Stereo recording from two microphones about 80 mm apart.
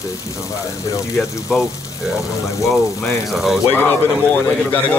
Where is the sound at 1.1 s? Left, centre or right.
Centre.